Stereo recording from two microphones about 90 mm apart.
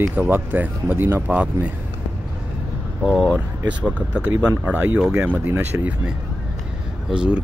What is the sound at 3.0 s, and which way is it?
Speech, 5° right (ahead or behind).